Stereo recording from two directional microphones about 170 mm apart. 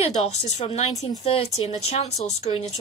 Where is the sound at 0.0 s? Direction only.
40° left (ahead or behind).